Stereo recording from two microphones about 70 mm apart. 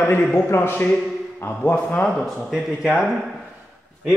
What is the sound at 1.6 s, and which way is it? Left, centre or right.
Speech, left.